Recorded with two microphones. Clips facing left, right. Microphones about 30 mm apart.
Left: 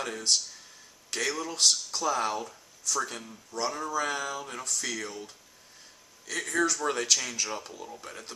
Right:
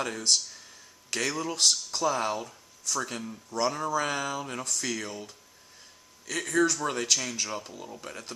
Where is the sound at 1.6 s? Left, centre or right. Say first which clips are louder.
Even; right.